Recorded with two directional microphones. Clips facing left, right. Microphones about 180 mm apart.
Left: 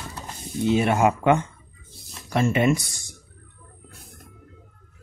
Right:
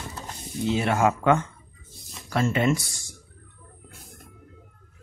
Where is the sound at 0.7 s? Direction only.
20° left (ahead or behind).